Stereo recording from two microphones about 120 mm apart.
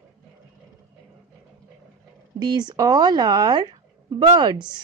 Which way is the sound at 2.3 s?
35° right (ahead or behind).